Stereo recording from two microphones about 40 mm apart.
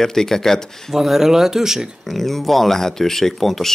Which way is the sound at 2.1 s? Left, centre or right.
Centre.